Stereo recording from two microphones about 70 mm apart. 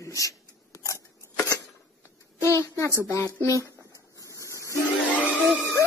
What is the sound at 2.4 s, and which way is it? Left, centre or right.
Speech, left.